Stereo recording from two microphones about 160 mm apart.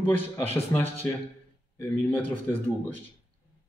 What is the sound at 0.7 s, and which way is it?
A man's voice, 20° left (ahead or behind).